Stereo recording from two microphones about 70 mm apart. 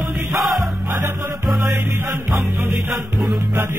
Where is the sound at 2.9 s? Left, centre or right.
Centre.